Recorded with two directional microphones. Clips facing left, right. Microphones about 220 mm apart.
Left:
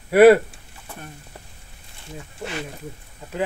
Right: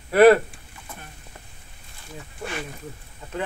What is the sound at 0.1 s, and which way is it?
Speech, 10° left (ahead or behind).